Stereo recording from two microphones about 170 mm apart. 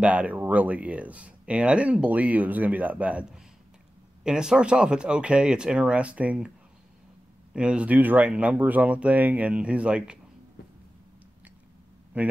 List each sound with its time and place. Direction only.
0.0 s speech: 10° right (ahead or behind)
7.5 s speech: 5° right (ahead or behind)
12.1 s speech: 10° right (ahead or behind)